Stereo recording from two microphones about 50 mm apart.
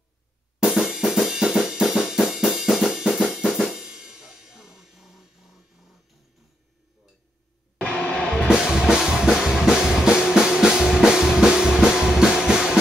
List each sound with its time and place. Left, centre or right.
0.7 s drum kit: centre
3.3 s music: centre
7.8 s music: centre
8.5 s music: centre